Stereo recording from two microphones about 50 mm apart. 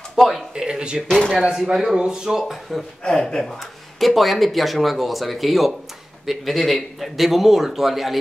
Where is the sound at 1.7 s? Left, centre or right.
Centre.